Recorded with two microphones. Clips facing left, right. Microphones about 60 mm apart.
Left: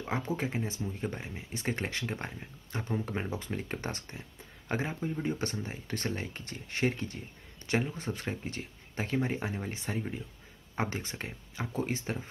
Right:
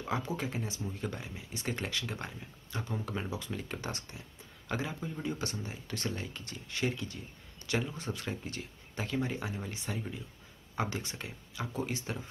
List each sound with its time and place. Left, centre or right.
0.4 s speech: left